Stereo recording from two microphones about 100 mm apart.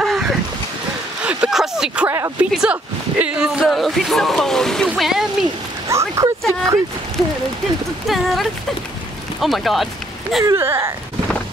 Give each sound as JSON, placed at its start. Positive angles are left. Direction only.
{"t": 0.0, "sound": "a sound", "side_deg": 0}
{"t": 2.0, "sound": "speech", "side_deg": -30}
{"t": 2.5, "sound": "speech", "side_deg": -10}
{"t": 5.9, "sound": "speech", "side_deg": -30}
{"t": 8.1, "sound": "speech", "side_deg": 0}
{"t": 10.4, "sound": "speech", "side_deg": -25}